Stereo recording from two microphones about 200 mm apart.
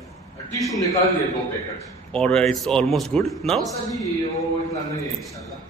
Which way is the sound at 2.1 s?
5° left (ahead or behind).